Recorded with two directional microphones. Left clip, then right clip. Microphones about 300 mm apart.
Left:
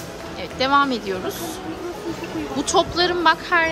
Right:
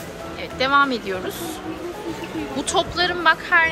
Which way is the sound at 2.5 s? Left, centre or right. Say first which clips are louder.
Left 2 dB; centre.